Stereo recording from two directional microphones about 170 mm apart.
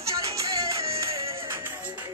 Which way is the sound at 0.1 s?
20° right (ahead or behind).